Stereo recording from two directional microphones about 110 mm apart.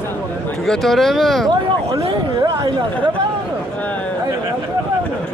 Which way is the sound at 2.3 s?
35° right (ahead or behind).